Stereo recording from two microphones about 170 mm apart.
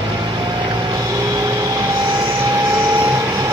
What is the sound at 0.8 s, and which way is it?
Vehicle, 20° right (ahead or behind).